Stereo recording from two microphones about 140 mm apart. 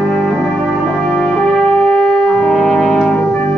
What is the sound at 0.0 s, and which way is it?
Brass instrument, 5° left (ahead or behind).